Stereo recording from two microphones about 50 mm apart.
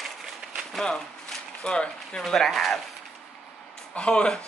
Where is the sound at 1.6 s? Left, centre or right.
Centre.